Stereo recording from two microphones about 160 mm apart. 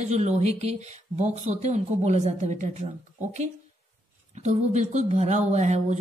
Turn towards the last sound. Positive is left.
turn(degrees=-45)  # may be behind; listen again after turning